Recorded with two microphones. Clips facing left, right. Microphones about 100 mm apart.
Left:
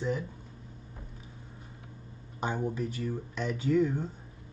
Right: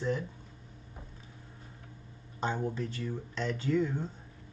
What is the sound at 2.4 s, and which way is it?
Speech, 10° left (ahead or behind).